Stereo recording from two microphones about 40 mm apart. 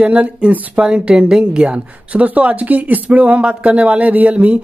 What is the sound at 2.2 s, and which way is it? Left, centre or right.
Speech, right.